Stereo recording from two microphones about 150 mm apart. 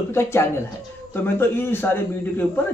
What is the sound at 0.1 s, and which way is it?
A man's voice, 15° left (ahead or behind).